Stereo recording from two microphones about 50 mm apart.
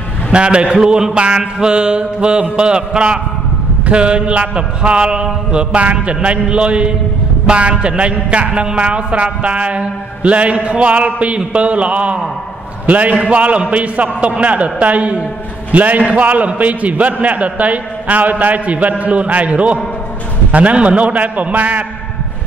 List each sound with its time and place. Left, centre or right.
0.3 s a man's voice: right